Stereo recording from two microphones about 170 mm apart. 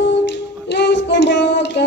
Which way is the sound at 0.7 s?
90° left.